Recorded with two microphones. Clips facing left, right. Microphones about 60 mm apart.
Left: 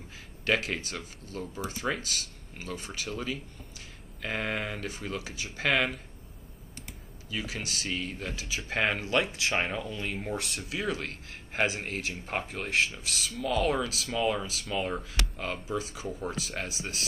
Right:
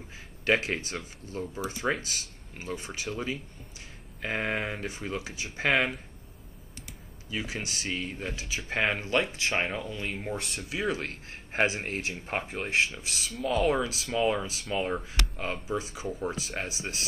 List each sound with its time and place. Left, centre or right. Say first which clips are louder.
0.5 s speech: right 2 dB; centre
7.2 s speech: right 1 dB; centre
8.4 s speech: even; centre
9.0 s speech: even; centre
11.2 s speech: right 2 dB; right
13.3 s speech: right 2 dB; centre
13.6 s speech: right 2 dB; centre